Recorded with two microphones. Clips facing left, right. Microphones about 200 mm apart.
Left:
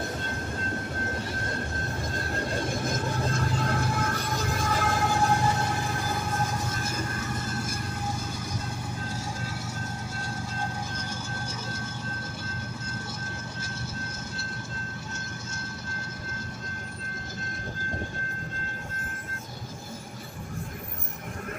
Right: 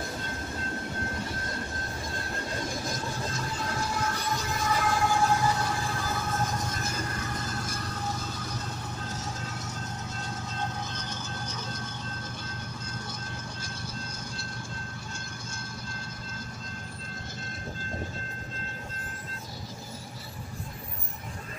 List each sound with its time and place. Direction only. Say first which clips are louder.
3.3 s train: left 5 dB; 55° left (ahead or behind)
6.6 s train: left 1 dB; 5° left (ahead or behind)
10.3 s vehicle: left 1 dB; 10° left (ahead or behind)